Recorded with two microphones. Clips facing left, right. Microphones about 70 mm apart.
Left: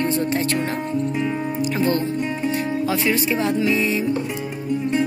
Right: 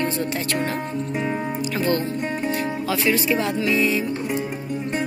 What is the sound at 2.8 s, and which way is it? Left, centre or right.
Speech, left.